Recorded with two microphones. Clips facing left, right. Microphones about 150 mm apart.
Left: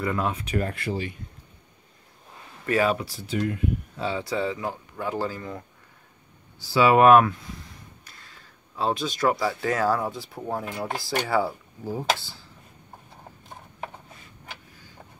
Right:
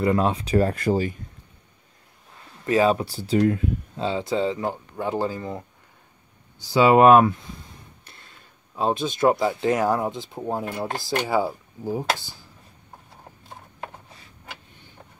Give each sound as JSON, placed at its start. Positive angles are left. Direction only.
{"t": 0.0, "sound": "speech", "side_deg": -30}
{"t": 2.6, "sound": "speech", "side_deg": -20}
{"t": 2.9, "sound": "speech", "side_deg": -30}
{"t": 4.0, "sound": "speech", "side_deg": -20}
{"t": 6.6, "sound": "speech", "side_deg": -20}
{"t": 8.0, "sound": "a sound", "side_deg": -25}
{"t": 8.7, "sound": "speech", "side_deg": -20}